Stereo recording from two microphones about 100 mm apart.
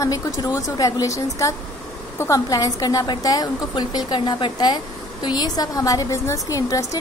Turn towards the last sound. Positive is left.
turn(degrees=35)  # may be behind; listen again after turning